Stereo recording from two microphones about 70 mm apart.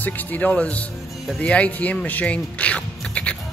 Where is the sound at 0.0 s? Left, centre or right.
Left.